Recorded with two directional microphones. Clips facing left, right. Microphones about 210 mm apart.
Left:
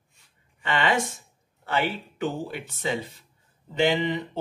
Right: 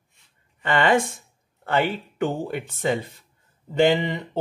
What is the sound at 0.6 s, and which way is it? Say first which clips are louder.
Speech: right 5 dB; 50° right (ahead or behind).